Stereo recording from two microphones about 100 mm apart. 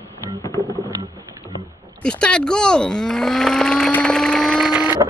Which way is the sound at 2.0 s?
10° left (ahead or behind).